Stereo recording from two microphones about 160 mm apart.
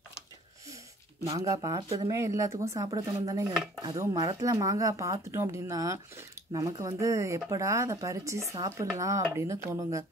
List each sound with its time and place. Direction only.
1.4 s speech: 20° right (ahead or behind)